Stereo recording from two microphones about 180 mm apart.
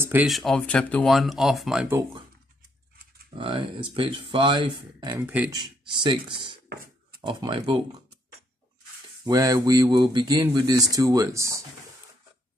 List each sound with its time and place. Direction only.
0.0 s a sound: 10° right (ahead or behind)
0.3 s speech: centre (ahead or behind)
3.3 s speech: 30° right (ahead or behind)
5.1 s speech: 10° right (ahead or behind)
5.5 s speech: 25° right (ahead or behind)
9.2 s speech: 20° right (ahead or behind)